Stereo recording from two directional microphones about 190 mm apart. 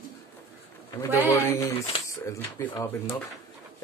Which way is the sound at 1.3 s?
15° left (ahead or behind).